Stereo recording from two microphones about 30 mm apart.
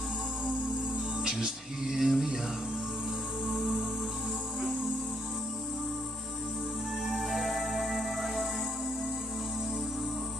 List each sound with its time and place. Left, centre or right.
1.2 s music: right
1.9 s a sound: centre
7.1 s music: centre